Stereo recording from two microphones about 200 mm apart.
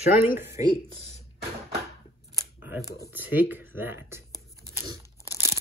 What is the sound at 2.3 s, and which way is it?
Camera, 10° right (ahead or behind).